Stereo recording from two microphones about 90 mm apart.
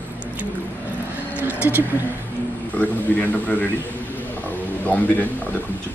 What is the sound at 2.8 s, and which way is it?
Speech, 15° left (ahead or behind).